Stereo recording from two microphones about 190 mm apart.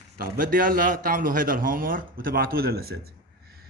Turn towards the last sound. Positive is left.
turn(degrees=-55)  # may be behind; listen again after turning